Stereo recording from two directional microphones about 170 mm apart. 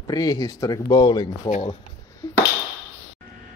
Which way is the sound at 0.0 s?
20° left (ahead or behind).